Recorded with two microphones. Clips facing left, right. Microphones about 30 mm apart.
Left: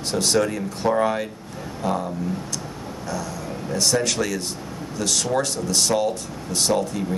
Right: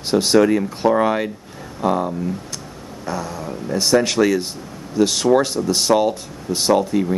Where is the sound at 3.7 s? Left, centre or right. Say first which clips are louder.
Right 5 dB; centre.